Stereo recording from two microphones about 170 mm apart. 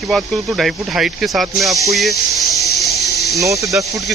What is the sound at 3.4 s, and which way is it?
Speech, 20° right (ahead or behind).